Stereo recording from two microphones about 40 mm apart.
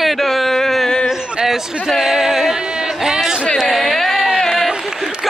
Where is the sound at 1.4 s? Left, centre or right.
Centre.